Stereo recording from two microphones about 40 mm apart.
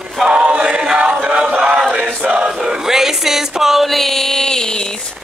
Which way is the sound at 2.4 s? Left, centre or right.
Right.